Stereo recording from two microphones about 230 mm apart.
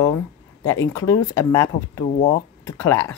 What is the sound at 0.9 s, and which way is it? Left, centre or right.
A woman's voice, centre.